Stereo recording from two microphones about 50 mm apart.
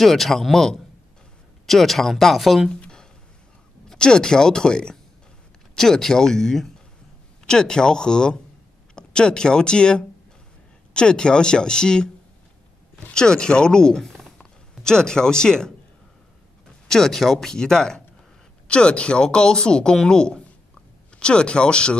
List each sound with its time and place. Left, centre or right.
0.0 s speech: centre
3.9 s speech: centre
13.1 s speech: centre
16.8 s speech: centre